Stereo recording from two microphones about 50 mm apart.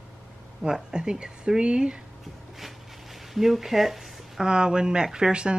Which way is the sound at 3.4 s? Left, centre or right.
Centre.